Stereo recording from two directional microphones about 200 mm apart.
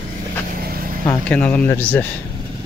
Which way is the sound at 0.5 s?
45° right (ahead or behind).